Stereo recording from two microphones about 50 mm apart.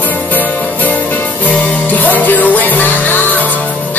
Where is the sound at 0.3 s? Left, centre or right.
Left.